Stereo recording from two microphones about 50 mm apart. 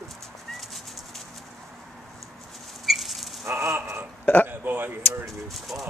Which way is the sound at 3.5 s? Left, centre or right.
Right.